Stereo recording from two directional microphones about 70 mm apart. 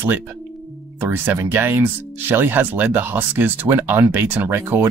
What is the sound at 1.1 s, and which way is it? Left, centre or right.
Speech, right.